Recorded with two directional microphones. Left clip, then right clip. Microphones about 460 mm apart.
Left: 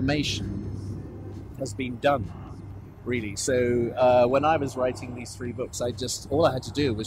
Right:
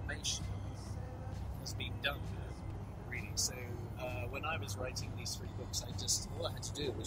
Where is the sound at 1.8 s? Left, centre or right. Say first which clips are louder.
Left 16 dB; left.